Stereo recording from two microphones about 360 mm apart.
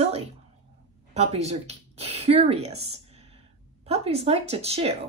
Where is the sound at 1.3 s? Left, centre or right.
Centre.